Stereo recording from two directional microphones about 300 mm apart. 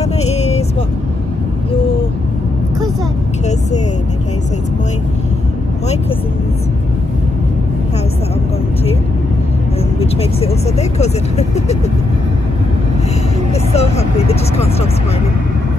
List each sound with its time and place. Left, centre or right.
0.0 s vehicle: left
9.9 s vehicle: centre
13.5 s vehicle: left